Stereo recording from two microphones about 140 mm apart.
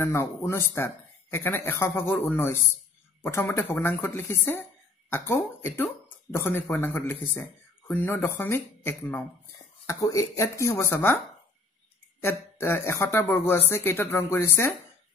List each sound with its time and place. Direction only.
0.0 s speech: 20° left (ahead or behind)
12.2 s speech: 15° left (ahead or behind)